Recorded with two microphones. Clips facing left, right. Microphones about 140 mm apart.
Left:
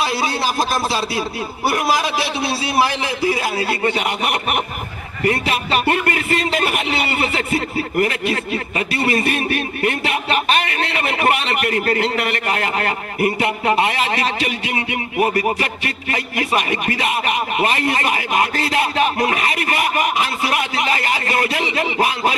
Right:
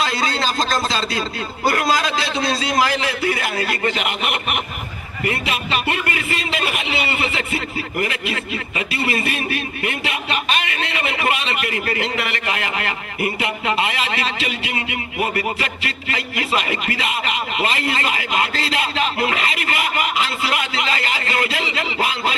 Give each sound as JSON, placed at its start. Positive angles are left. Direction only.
{"t": 0.0, "sound": "speech", "side_deg": 10}
{"t": 3.1, "sound": "a man's voice", "side_deg": -65}
{"t": 3.6, "sound": "a man's voice", "side_deg": 35}
{"t": 18.1, "sound": "speech", "side_deg": 20}
{"t": 20.0, "sound": "speech", "side_deg": 20}